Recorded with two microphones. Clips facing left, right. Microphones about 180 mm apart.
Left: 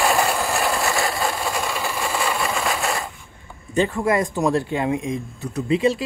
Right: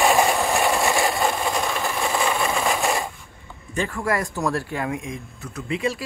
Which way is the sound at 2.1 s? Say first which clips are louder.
Right 1 dB; centre (ahead or behind).